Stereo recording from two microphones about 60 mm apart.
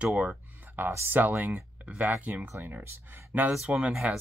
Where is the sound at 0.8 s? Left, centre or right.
Right.